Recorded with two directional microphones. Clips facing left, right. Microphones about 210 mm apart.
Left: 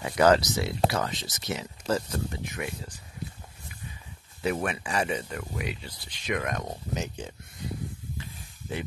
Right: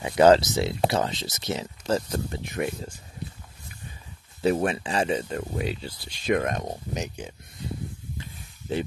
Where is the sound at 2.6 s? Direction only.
40° right (ahead or behind).